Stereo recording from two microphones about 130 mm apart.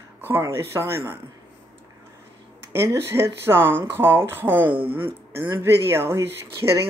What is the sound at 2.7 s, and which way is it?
Speech, 20° right (ahead or behind).